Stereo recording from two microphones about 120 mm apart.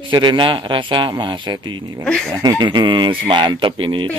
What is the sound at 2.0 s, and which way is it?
Speech, 5° left (ahead or behind).